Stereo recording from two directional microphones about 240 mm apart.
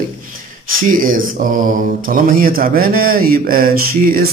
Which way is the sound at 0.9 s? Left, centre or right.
Right.